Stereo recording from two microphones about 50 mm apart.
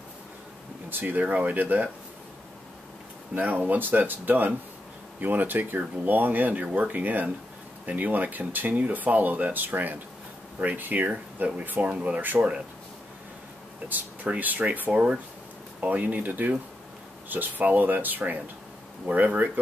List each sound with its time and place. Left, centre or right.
0.8 s speech: right
3.3 s speech: right
13.8 s speech: right